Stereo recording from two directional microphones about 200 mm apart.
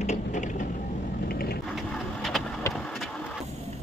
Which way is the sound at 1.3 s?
50° left (ahead or behind).